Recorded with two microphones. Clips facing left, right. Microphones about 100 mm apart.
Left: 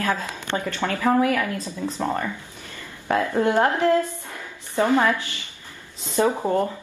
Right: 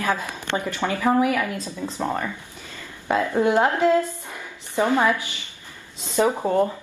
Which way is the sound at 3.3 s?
15° right (ahead or behind).